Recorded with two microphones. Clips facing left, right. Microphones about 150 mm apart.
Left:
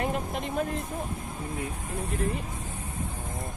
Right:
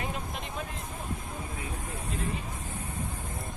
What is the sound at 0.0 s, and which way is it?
Vehicle, 55° left (ahead or behind).